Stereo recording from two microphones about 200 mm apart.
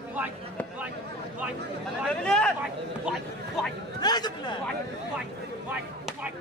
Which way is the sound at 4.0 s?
20° left (ahead or behind).